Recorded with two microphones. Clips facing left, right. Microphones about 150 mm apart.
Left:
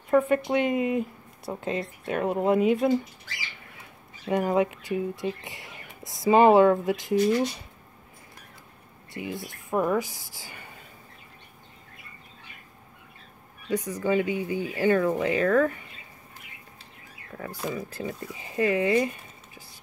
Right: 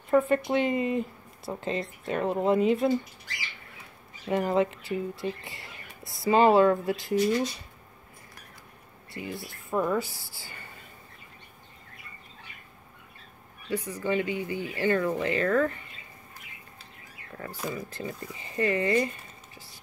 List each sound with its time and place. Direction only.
0.5 s speech: 5° left (ahead or behind)
4.3 s speech: 10° left (ahead or behind)
9.1 s speech: 20° left (ahead or behind)
13.7 s speech: 15° left (ahead or behind)
17.4 s speech: 5° left (ahead or behind)